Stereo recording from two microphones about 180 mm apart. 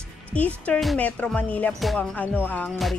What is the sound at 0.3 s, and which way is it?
Speech, 5° left (ahead or behind).